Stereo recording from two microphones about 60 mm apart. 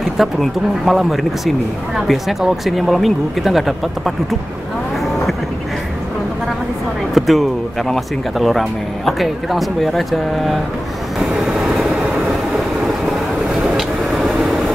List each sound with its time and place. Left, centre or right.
0.2 s speech: centre
7.2 s speech: centre
11.1 s vehicle: centre
13.7 s vehicle: centre